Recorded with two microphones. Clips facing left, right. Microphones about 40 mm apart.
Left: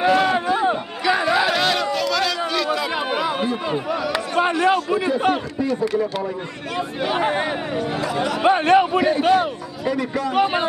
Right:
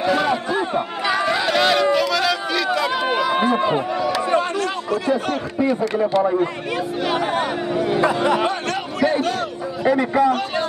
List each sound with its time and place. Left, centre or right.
0.0 s a sound: centre
1.2 s chatter: centre
1.9 s run: centre
3.3 s a sound: right
4.4 s a sound: left
5.6 s speech: right
7.0 s speech: centre
8.0 s speech: right
8.5 s a sound: left
9.2 s a man's voice: centre
9.8 s speech: right
10.3 s a man's voice: centre